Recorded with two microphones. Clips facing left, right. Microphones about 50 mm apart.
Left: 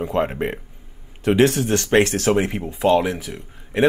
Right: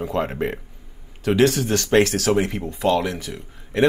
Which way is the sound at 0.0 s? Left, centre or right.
Centre.